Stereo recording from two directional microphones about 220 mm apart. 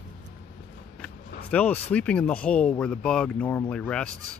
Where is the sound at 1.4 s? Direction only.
5° left (ahead or behind).